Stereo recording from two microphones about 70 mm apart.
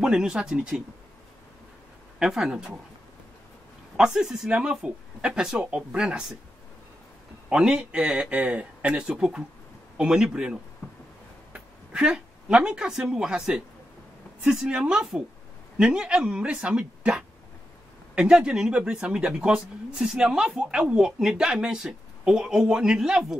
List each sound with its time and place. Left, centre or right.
0.0 s speech: centre
2.1 s speech: centre
3.9 s speech: centre
7.4 s speech: centre
10.8 s a sound: left
11.5 s speech: centre